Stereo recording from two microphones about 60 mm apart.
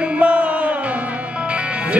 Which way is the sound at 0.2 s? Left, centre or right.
Right.